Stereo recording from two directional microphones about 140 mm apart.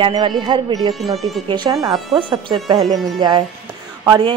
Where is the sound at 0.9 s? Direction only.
Centre (ahead or behind).